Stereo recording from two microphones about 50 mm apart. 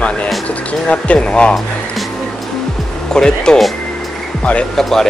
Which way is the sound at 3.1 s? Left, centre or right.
Centre.